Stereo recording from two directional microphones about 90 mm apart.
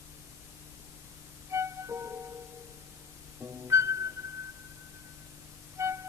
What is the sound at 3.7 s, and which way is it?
Music, 35° right (ahead or behind).